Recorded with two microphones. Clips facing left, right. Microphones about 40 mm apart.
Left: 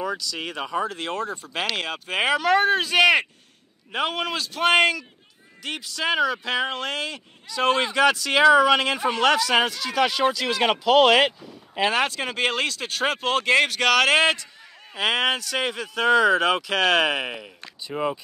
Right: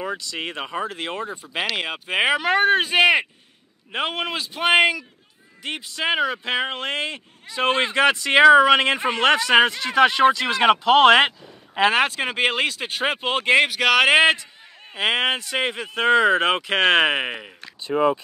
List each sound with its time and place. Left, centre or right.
0.0 s speech: right
3.0 s speech: centre
3.9 s speech: right